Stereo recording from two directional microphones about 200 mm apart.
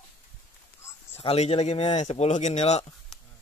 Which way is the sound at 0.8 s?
15° left (ahead or behind).